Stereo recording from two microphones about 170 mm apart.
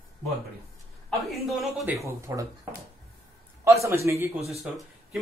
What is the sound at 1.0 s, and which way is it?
Speech, centre (ahead or behind).